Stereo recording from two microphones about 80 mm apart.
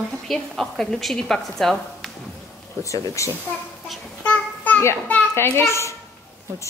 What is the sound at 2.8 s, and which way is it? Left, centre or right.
Speech, left.